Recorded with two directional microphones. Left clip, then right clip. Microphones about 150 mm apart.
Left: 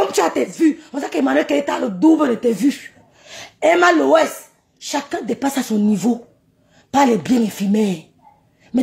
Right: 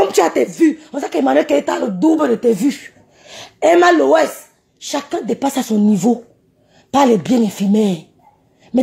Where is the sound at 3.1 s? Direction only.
20° right (ahead or behind).